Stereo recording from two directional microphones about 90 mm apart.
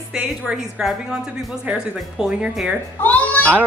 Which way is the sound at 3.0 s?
15° left (ahead or behind).